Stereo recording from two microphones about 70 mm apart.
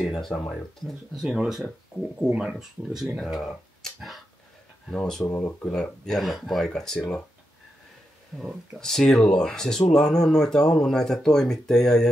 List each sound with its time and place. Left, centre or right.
0.1 s speech: centre
0.8 s speech: centre
2.6 s speech: centre
5.3 s speech: left
5.7 s speech: centre
6.1 s speech: centre
8.5 s speech: centre